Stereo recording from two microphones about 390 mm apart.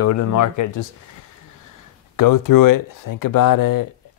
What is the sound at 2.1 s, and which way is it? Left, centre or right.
Speech, left.